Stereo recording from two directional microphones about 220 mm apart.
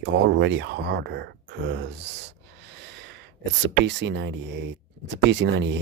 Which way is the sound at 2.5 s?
50° right (ahead or behind).